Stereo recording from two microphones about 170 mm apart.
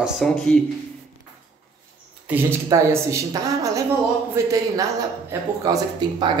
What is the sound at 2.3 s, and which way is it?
A woman's voice, 15° right (ahead or behind).